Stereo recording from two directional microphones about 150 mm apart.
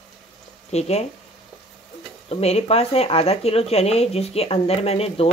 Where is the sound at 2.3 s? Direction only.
45° left (ahead or behind).